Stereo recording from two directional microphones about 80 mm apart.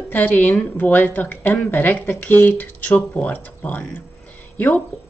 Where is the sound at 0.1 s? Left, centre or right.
Left.